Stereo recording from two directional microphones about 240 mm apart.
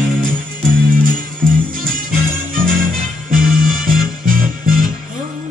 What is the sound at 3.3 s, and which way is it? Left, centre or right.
Music, right.